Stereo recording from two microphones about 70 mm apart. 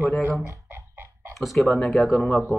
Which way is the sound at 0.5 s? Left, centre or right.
Right.